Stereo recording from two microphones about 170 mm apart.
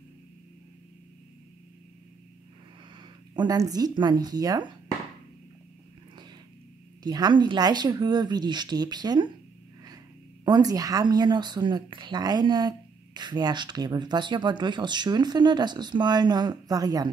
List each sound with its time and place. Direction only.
3.0 s speech: 25° right (ahead or behind)
7.0 s a woman's voice: 25° right (ahead or behind)
10.4 s a woman's voice: 20° right (ahead or behind)